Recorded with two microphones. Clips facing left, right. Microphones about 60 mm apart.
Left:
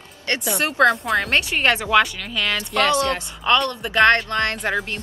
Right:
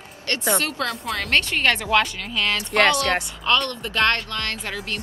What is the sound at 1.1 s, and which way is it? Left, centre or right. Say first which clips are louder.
Speech: left 2 dB; centre.